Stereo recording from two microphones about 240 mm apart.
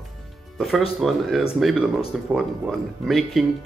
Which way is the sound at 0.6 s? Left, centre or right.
Centre.